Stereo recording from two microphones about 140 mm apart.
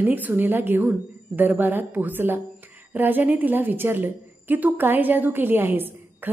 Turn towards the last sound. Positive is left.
turn(degrees=-15)  # may be behind; listen again after turning